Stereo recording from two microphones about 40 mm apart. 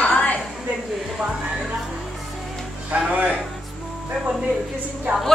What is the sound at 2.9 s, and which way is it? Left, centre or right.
Music, right.